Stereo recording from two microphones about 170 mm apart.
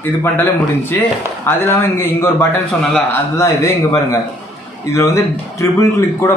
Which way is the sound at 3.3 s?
15° left (ahead or behind).